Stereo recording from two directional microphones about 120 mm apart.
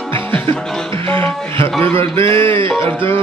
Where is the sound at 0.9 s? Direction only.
20° left (ahead or behind).